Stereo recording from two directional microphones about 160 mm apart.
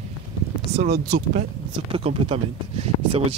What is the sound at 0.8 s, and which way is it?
Speech, 45° right (ahead or behind).